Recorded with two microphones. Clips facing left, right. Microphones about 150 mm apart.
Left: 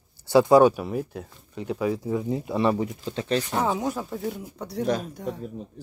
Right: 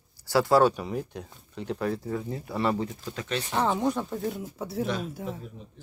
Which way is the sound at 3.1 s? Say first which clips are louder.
Left 7 dB; 35° left (ahead or behind).